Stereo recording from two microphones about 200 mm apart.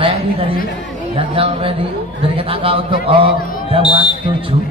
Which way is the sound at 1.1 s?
25° right (ahead or behind).